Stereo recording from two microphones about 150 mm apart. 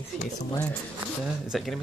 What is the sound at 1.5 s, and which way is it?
Speech, centre (ahead or behind).